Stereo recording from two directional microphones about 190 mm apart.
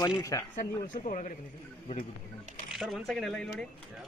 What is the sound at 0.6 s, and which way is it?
Speech, 40° left (ahead or behind).